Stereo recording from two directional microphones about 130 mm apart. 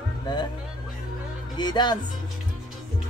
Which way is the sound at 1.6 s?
35° left (ahead or behind).